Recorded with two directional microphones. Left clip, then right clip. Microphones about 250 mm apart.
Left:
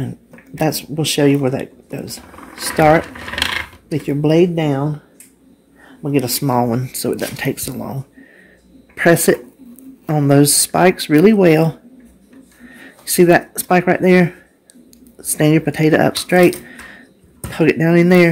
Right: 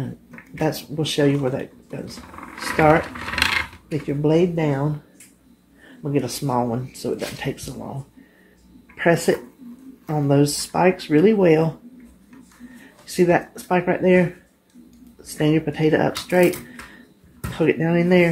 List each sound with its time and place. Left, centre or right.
0.6 s speech: left
3.3 s a sound: centre
3.9 s speech: left
6.0 s speech: left
8.9 s speech: left
13.0 s speech: left
15.3 s speech: left